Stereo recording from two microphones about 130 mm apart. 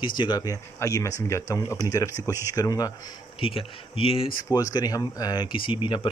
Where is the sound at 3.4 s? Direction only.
45° left (ahead or behind).